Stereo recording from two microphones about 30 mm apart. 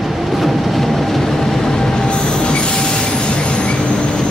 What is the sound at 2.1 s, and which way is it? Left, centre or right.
Train, left.